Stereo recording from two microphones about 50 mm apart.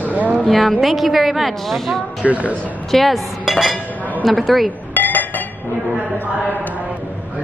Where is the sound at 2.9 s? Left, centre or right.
Centre.